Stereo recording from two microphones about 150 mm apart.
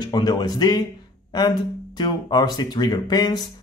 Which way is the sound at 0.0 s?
30° left (ahead or behind).